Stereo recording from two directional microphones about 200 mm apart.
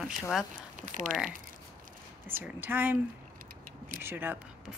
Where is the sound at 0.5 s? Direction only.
40° right (ahead or behind).